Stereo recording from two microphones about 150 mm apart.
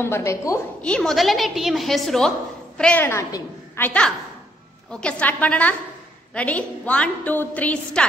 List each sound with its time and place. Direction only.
0.0 s a woman's voice: 20° left (ahead or behind)
0.8 s a woman's voice: 5° left (ahead or behind); by 3.8 s 20° left (ahead or behind)
3.8 s a woman's voice: 10° left (ahead or behind)